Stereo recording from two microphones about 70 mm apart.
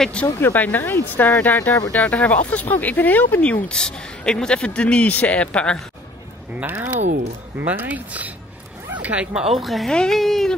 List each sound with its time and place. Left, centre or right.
0.0 s speech: centre
0.4 s speech: left
6.6 s speech: right
9.4 s speech: centre